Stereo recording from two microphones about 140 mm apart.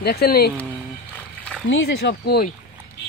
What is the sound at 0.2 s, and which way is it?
Speech, 90° left.